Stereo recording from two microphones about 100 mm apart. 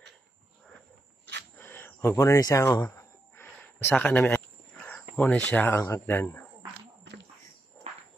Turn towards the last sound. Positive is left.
turn(degrees=20)  # may be behind; listen again after turning